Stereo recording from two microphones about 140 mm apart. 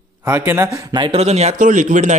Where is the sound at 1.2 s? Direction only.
50° right (ahead or behind).